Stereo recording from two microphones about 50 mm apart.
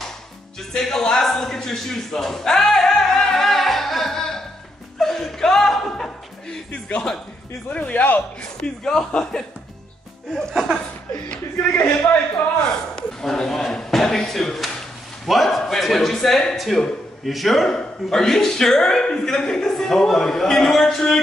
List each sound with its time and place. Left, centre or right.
0.7 s a sound: centre
4.9 s chuckle: centre
7.7 s speech: left
8.8 s speech: centre
10.5 s a man's voice: centre
11.7 s speech: left
12.9 s a man's voice: centre